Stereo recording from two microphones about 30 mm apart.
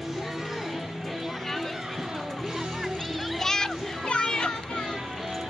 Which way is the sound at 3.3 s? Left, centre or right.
Centre.